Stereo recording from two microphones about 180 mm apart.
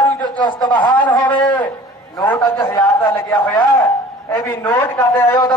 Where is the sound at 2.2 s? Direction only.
15° left (ahead or behind).